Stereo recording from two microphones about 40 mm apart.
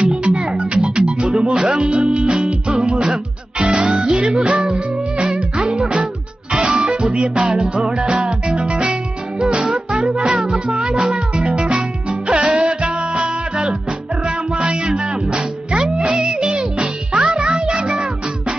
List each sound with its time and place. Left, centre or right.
0.1 s music: right
3.0 s music: right
5.2 s music: centre
5.7 s music: right